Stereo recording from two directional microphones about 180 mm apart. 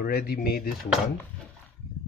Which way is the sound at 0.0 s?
55° left (ahead or behind).